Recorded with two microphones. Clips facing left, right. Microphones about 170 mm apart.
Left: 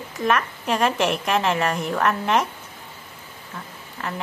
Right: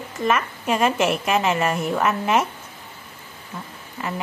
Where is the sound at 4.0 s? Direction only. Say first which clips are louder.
Right 2 dB; 10° right (ahead or behind).